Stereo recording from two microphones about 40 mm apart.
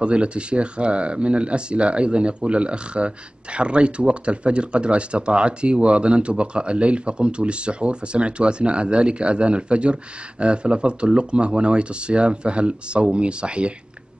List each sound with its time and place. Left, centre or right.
0.0 s speech: right